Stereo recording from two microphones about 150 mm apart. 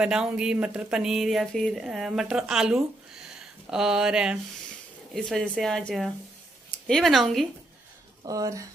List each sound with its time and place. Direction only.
0.0 s speech: 5° right (ahead or behind)
8.3 s speech: 20° right (ahead or behind)